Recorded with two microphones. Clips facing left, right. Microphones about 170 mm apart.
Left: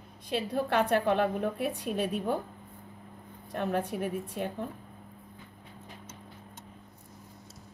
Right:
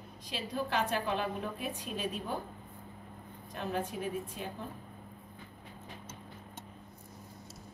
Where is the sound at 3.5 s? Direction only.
60° left (ahead or behind).